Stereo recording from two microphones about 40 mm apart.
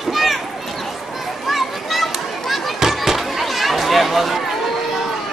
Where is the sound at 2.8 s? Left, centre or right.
Centre.